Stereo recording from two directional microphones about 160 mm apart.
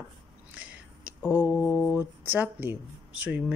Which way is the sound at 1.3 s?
25° left (ahead or behind).